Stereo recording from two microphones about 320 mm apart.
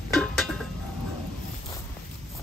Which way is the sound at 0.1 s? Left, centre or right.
Centre.